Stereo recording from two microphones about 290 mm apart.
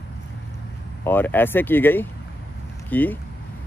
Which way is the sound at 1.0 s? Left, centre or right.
Centre.